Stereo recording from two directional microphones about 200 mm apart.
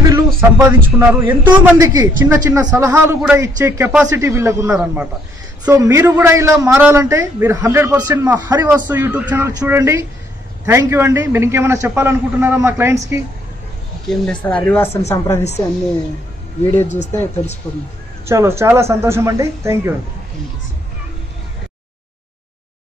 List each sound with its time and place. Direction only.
0.4 s a man's voice: 10° right (ahead or behind)
14.0 s speech: 5° left (ahead or behind)
16.8 s speech: 35° left (ahead or behind)
17.6 s speech: 10° left (ahead or behind)
18.2 s a man's voice: 15° right (ahead or behind)